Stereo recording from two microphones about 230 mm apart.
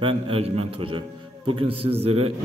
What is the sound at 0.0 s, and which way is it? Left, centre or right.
A man's voice, right.